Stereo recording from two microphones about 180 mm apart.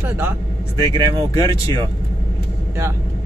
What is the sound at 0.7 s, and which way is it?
Speech, 20° left (ahead or behind).